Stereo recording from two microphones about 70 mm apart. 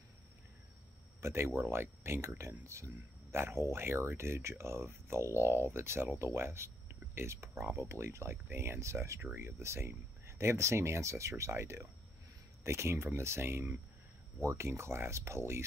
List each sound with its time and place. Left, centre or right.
1.2 s speech: right